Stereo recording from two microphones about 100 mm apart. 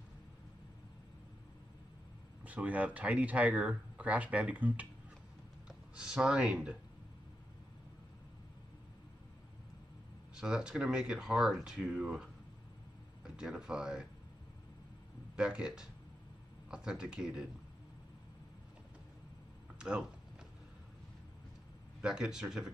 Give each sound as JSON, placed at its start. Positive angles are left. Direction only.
{"t": 2.4, "sound": "speech", "side_deg": -15}
{"t": 10.3, "sound": "speech", "side_deg": -5}
{"t": 15.3, "sound": "speech", "side_deg": -10}
{"t": 19.8, "sound": "speech", "side_deg": -10}
{"t": 22.0, "sound": "speech", "side_deg": -5}